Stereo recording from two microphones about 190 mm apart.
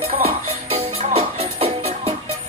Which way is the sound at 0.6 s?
35° right (ahead or behind).